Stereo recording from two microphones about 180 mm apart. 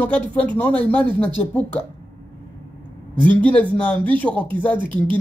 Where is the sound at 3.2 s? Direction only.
10° left (ahead or behind).